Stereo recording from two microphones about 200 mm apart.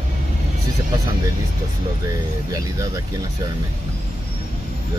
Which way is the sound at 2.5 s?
15° right (ahead or behind).